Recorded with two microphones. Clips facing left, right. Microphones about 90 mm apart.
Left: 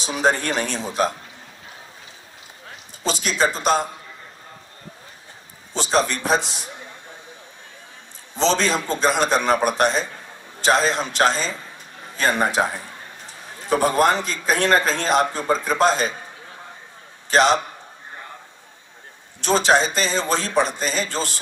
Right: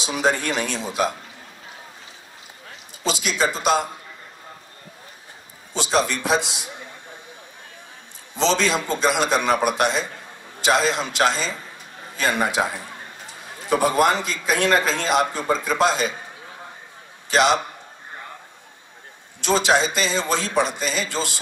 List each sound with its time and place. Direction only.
0.0 s a man's voice: 40° left (ahead or behind)
3.0 s a man's voice: 40° left (ahead or behind)
5.8 s a man's voice: 40° left (ahead or behind)
8.4 s a man's voice: 40° left (ahead or behind)
17.3 s a man's voice: 40° left (ahead or behind)
19.4 s a man's voice: 40° left (ahead or behind)